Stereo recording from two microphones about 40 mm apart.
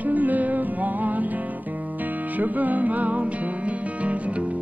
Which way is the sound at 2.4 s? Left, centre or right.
Right.